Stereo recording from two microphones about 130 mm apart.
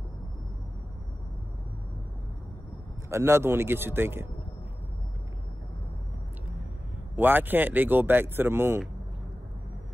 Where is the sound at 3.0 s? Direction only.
20° right (ahead or behind).